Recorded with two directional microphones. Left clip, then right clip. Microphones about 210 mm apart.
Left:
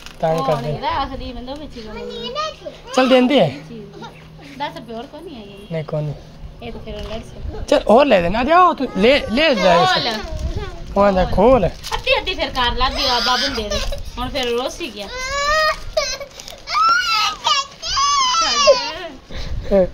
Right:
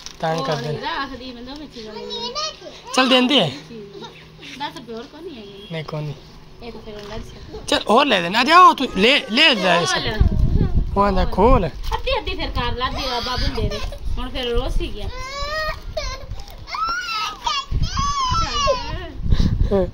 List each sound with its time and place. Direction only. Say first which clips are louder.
0.2 s speech: left 4 dB; centre (ahead or behind)
0.8 s a woman's voice: left 4 dB; 20° left (ahead or behind)
2.9 s speech: left 2 dB; 5° left (ahead or behind)
5.7 s speech: left 6 dB; 10° left (ahead or behind)
7.6 s speech: left 4 dB; 15° left (ahead or behind)
8.4 s speech: right 5 dB; 5° left (ahead or behind)
8.7 s speech: even; 10° right (ahead or behind)
9.0 s speech: even; 10° left (ahead or behind)
10.6 s speech: left 4 dB; centre (ahead or behind)
14.8 s child singing: left 5 dB; 15° left (ahead or behind)
16.9 s baby cry: left 8 dB; 10° left (ahead or behind)
19.3 s a sound: left 5 dB; centre (ahead or behind)